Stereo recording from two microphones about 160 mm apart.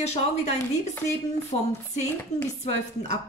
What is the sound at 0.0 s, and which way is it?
A woman's voice, 45° left (ahead or behind).